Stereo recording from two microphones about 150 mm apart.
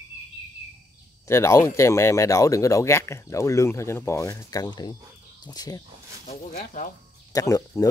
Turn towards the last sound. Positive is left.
turn(degrees=20)  # may be behind; listen again after turning